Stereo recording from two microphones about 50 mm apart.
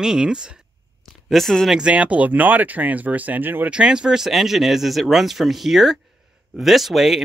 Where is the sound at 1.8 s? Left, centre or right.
Right.